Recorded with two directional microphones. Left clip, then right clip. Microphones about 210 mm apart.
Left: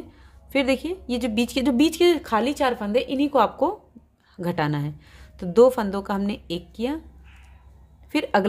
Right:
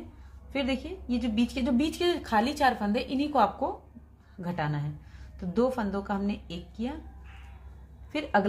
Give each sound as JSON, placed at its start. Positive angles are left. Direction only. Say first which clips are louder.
{"t": 0.5, "sound": "a woman's voice", "louder": "left 9 dB", "side_deg": 45}
{"t": 8.1, "sound": "a woman's voice", "louder": "left 5 dB", "side_deg": 45}